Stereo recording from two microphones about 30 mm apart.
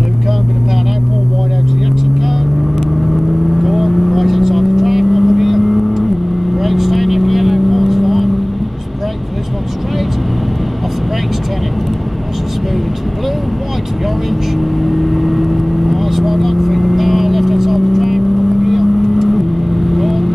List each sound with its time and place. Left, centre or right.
3.5 s vehicle: centre
14.6 s vehicle: centre